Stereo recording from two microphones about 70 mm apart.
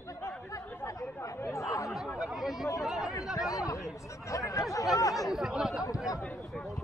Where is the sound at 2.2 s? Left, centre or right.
Centre.